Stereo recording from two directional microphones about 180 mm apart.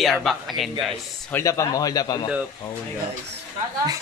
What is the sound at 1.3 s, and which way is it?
Speech, 15° left (ahead or behind).